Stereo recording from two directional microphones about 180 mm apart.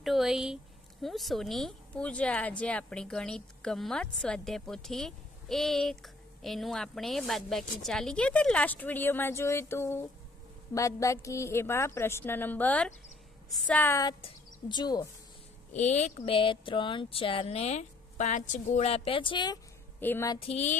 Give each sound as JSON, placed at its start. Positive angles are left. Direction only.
{"t": 0.0, "sound": "a woman's voice", "side_deg": 0}
{"t": 15.7, "sound": "speech", "side_deg": 40}
{"t": 20.0, "sound": "a woman's voice", "side_deg": 10}
{"t": 20.4, "sound": "speech", "side_deg": 35}